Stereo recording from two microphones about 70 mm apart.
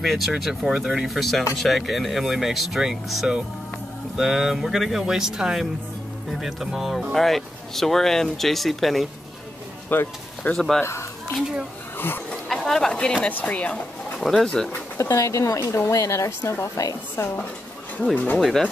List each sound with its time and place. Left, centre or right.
0.0 s speech: centre
9.8 s music: left
10.5 s speech: centre
10.8 s music: left
12.4 s a sound: centre
13.3 s speech: left
14.1 s speech: centre
15.0 s speech: left
15.6 s speech: left
15.9 s speech: left
17.9 s speech: centre
18.4 s speech: centre